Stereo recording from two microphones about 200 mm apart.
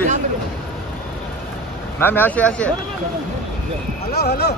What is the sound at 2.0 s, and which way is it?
Speech, 10° left (ahead or behind).